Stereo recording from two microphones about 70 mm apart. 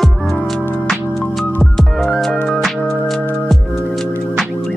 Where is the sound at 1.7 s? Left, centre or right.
Centre.